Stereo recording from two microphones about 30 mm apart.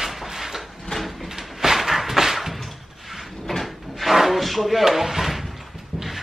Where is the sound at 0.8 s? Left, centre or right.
Centre.